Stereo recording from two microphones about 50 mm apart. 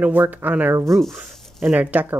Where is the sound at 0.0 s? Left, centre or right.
Right.